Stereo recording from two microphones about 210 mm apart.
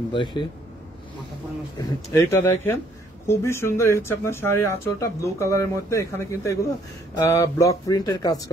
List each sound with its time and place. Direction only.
0.1 s speech: 20° left (ahead or behind)
1.8 s speech: 10° left (ahead or behind)